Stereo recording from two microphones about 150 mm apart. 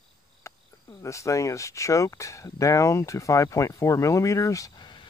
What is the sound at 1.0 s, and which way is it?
Speech, 20° left (ahead or behind).